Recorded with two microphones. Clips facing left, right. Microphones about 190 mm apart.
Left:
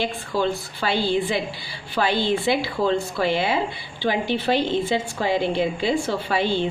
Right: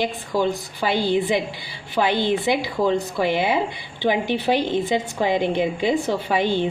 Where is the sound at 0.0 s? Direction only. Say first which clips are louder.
Right 2 dB; 15° right (ahead or behind).